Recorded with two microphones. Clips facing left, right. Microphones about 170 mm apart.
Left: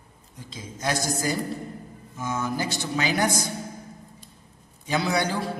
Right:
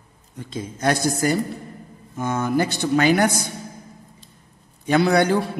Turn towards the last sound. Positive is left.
turn(degrees=-60)  # may be behind; listen again after turning